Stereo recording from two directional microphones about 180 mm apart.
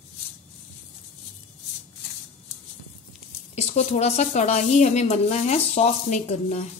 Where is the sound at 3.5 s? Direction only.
35° left (ahead or behind).